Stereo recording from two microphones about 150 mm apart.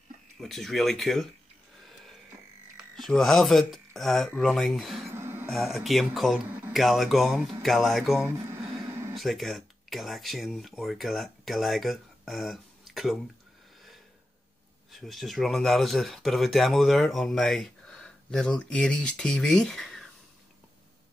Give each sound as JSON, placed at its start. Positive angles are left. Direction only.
{"t": 0.4, "sound": "speech", "side_deg": 0}
{"t": 2.8, "sound": "speech", "side_deg": 0}
{"t": 5.1, "sound": "a sound", "side_deg": -15}
{"t": 5.5, "sound": "speech", "side_deg": 0}
{"t": 14.9, "sound": "speech", "side_deg": 0}